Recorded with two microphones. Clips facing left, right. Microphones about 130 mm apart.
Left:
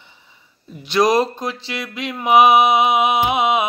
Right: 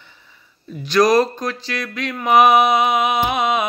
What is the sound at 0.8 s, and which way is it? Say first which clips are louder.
Mantra: right 1 dB; 20° left (ahead or behind).